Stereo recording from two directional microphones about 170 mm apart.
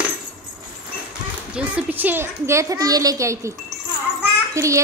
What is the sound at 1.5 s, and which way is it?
A child's voice, 10° right (ahead or behind).